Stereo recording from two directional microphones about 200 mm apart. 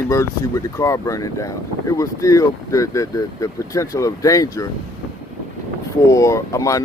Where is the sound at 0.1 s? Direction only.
15° left (ahead or behind).